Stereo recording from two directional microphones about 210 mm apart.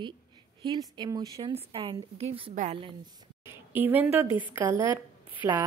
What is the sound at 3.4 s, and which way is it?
Speech, 10° right (ahead or behind).